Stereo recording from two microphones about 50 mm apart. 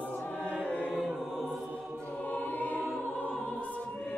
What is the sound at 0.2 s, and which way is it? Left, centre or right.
Choir, left.